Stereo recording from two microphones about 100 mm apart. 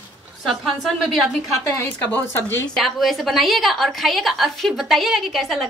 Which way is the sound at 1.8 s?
25° left (ahead or behind).